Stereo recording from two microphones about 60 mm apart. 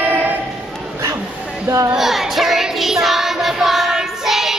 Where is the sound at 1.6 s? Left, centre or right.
Right.